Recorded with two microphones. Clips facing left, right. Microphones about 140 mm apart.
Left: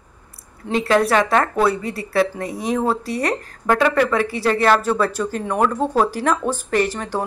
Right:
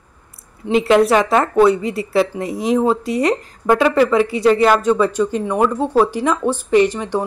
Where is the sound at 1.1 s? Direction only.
25° right (ahead or behind).